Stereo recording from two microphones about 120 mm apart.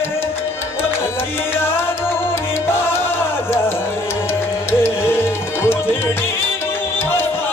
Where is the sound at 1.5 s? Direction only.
20° left (ahead or behind).